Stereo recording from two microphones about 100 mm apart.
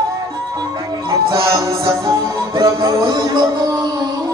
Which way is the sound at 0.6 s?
35° right (ahead or behind).